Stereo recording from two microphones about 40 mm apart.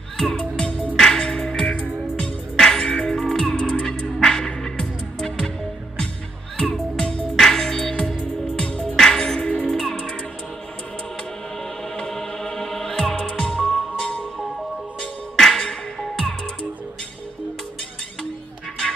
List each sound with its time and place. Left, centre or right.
0.2 s music: left
6.6 s music: centre
9.4 s music: left
9.7 s music: centre
12.1 s music: centre